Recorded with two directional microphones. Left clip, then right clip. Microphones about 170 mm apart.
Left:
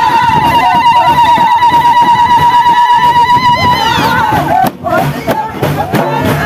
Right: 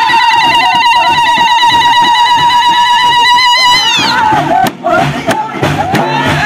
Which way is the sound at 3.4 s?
60° left (ahead or behind).